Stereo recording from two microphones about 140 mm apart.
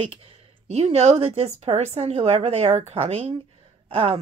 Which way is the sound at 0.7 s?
50° right (ahead or behind).